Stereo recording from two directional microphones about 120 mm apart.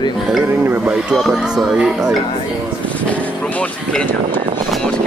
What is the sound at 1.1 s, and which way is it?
Speech, centre (ahead or behind).